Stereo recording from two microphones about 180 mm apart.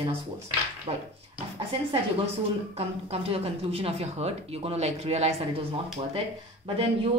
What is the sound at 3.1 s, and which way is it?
Speech, 35° right (ahead or behind).